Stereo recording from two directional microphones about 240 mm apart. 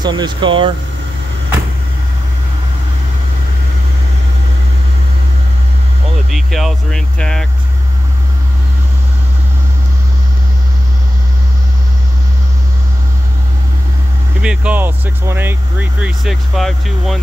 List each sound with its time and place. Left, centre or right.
0.0 s speech: centre
6.3 s speech: centre
14.4 s speech: centre